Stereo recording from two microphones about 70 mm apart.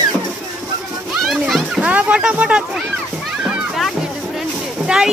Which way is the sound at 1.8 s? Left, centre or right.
Centre.